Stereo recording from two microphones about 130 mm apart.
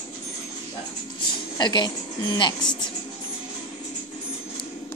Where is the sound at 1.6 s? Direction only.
35° left (ahead or behind).